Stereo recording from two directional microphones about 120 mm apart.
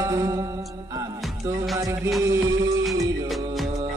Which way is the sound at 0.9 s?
25° right (ahead or behind).